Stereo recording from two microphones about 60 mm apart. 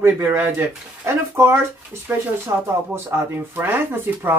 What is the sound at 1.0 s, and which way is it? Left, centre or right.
Speech, right.